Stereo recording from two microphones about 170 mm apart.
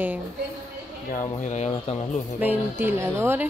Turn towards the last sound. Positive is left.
turn(degrees=-15)  # may be behind; listen again after turning